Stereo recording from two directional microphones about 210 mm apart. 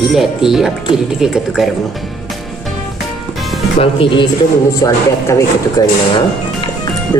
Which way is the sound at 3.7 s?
25° left (ahead or behind).